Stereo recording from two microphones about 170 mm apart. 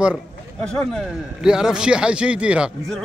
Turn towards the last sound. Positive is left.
turn(degrees=-5)  # may be behind; listen again after turning